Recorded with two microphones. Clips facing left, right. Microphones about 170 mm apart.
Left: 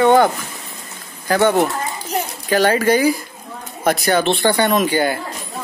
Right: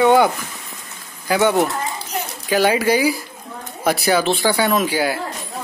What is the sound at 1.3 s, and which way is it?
Speech, 10° right (ahead or behind).